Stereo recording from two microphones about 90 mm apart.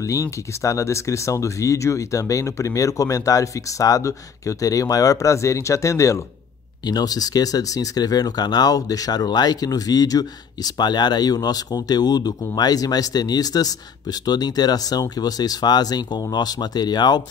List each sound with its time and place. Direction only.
0.0 s speech: 35° left (ahead or behind)
6.8 s speech: 50° left (ahead or behind)